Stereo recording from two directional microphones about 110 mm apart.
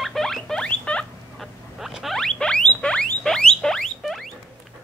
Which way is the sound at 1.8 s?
5° right (ahead or behind).